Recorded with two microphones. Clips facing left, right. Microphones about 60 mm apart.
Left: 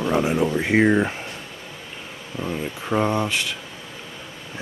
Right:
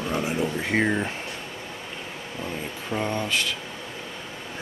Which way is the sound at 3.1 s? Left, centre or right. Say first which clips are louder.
Left 3 dB; centre.